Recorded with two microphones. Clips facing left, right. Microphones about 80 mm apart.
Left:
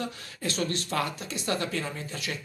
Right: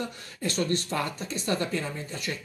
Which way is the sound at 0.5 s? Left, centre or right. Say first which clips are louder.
Right 2 dB; right.